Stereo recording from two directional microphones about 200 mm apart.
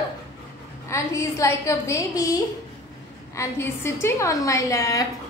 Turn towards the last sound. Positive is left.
turn(degrees=15)  # may be behind; listen again after turning